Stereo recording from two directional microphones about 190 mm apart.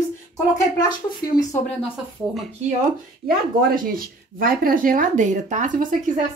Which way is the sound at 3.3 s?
50° right (ahead or behind).